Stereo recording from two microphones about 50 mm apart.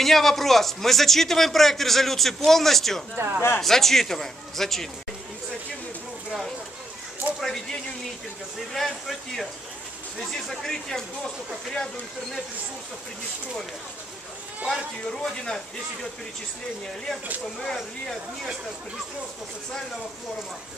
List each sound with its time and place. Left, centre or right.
0.0 s a man's voice: centre
3.2 s speech: right
3.6 s a man's voice: centre
7.3 s speech: centre
8.7 s a man's voice: centre
15.0 s speech: centre